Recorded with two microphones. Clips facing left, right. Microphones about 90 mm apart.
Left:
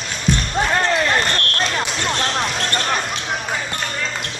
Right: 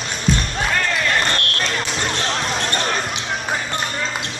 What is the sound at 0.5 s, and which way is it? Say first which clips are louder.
Basketball bounce: left 3 dB; 25° left (ahead or behind).